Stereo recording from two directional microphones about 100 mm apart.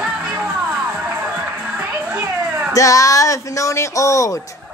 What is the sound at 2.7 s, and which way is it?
Speech, 35° left (ahead or behind).